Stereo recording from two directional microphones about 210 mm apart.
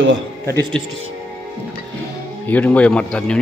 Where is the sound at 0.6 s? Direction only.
25° right (ahead or behind).